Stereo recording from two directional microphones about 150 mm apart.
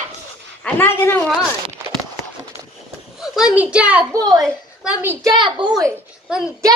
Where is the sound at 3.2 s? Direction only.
5° right (ahead or behind).